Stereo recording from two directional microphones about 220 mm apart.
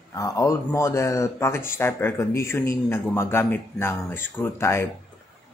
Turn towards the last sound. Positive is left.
turn(degrees=10)  # may be behind; listen again after turning